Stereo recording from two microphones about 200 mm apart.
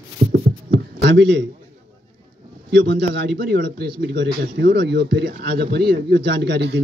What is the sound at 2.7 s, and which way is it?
A man's voice, 55° right (ahead or behind).